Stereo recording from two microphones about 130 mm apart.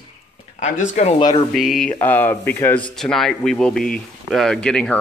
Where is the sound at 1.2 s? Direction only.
40° left (ahead or behind).